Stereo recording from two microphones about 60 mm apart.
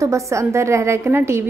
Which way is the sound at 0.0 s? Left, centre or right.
Right.